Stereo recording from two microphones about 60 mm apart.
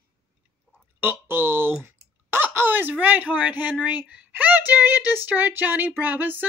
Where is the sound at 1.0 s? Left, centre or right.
Right; by 4.3 s centre.